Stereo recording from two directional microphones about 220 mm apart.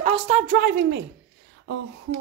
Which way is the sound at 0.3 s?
40° right (ahead or behind).